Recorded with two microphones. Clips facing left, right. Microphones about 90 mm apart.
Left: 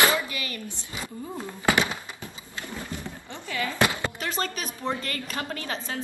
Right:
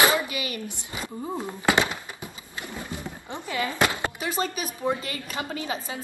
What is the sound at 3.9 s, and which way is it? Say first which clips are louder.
A woman's voice: right 2 dB; 15° right (ahead or behind).